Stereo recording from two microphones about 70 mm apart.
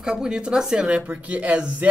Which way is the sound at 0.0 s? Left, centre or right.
Centre.